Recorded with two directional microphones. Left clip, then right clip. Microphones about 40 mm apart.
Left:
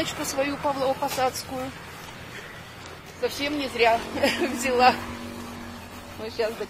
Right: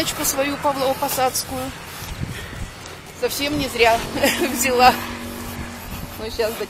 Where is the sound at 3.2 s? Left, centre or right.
Centre.